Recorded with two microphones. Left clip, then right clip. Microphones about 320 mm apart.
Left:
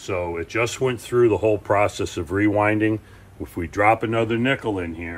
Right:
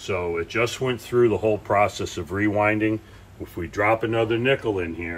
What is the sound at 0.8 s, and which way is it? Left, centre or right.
Speech, left.